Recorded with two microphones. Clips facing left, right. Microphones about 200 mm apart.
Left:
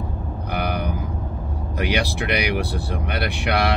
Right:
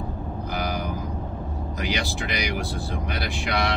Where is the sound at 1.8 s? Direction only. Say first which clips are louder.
Left 6 dB; 65° left (ahead or behind).